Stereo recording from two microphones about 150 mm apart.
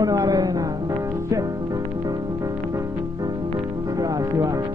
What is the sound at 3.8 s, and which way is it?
Music, 25° right (ahead or behind).